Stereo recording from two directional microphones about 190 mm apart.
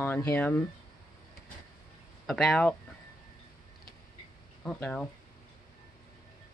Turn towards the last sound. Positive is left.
turn(degrees=5)  # may be behind; listen again after turning